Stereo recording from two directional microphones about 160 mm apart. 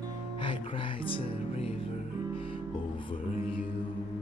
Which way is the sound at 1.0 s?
35° left (ahead or behind).